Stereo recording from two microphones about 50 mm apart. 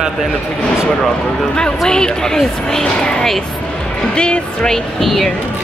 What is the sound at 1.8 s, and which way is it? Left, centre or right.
Speech, centre.